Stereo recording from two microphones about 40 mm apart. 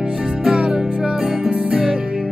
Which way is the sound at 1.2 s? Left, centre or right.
Centre.